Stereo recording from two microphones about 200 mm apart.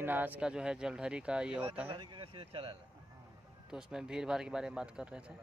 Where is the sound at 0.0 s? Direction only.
10° right (ahead or behind).